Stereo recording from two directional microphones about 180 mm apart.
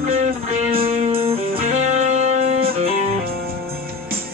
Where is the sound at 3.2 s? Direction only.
55° right (ahead or behind).